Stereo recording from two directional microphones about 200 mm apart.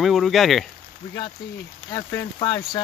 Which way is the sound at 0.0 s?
Centre (ahead or behind).